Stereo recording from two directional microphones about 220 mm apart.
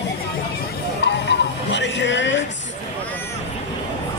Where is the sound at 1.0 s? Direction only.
50° left (ahead or behind).